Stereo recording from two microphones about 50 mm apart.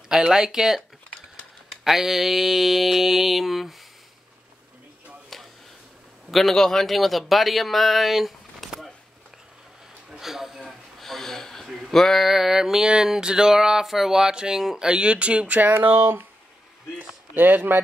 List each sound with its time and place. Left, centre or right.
0.1 s speech: centre
1.9 s mantra: centre
5.3 s a sound: centre
6.3 s a man's voice: centre
10.1 s a sound: centre
12.3 s speech: centre
14.9 s speech: right
17.3 s speech: right